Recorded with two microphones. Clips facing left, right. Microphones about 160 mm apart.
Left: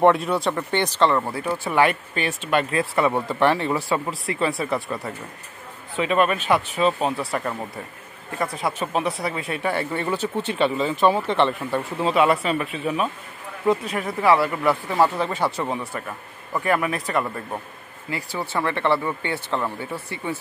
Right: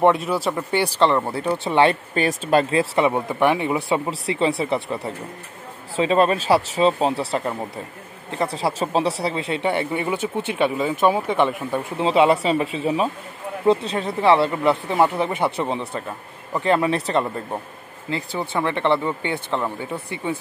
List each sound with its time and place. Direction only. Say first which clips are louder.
0.0 s speech: even; centre (ahead or behind)
1.3 s speech: right 2 dB; 25° right (ahead or behind); by 2.6 s 40° right (ahead or behind)
2.7 s speech: right 3 dB; 25° right (ahead or behind)
3.1 s a man's voice: right 1 dB; 10° right (ahead or behind)
12.0 s speech: right 3 dB; 25° right (ahead or behind)